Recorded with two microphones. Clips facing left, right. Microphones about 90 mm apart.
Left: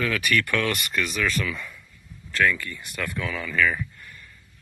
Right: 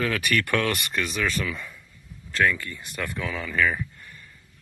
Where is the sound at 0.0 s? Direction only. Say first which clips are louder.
Left 1 dB; 35° right (ahead or behind).